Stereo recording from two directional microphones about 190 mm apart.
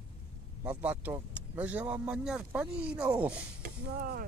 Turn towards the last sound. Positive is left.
turn(degrees=-50)  # may be behind; listen again after turning